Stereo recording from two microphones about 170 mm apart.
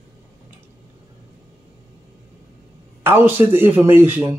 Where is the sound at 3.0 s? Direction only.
10° right (ahead or behind).